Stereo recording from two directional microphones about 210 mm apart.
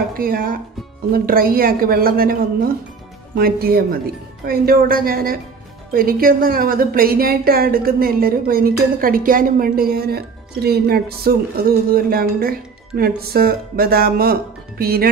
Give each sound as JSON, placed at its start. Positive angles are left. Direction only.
{"t": 0.1, "sound": "a woman's voice", "side_deg": -45}